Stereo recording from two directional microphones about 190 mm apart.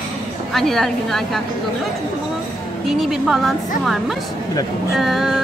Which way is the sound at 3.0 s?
Centre (ahead or behind).